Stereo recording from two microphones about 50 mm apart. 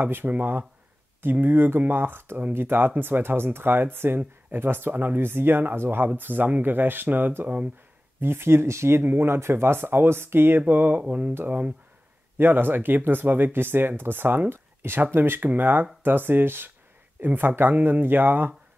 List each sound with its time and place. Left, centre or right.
0.0 s speech: right
8.2 s speech: right
10.7 s speech: right
12.4 s speech: right